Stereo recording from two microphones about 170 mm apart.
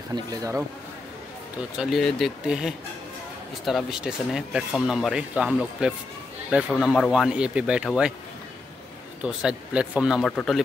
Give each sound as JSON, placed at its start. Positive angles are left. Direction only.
{"t": 0.1, "sound": "speech", "side_deg": -20}
{"t": 1.8, "sound": "speech", "side_deg": 0}
{"t": 9.2, "sound": "speech", "side_deg": -5}